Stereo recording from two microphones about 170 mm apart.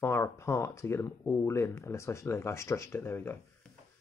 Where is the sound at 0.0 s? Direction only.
15° left (ahead or behind).